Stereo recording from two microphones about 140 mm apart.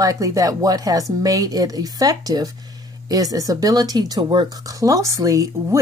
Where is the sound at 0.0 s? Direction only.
25° right (ahead or behind).